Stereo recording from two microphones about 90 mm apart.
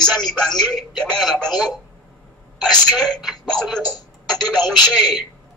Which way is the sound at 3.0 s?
Centre (ahead or behind).